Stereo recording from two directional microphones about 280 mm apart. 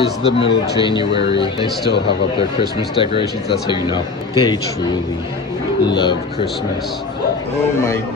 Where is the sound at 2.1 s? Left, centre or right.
Centre.